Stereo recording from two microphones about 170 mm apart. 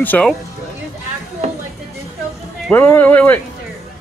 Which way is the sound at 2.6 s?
10° left (ahead or behind).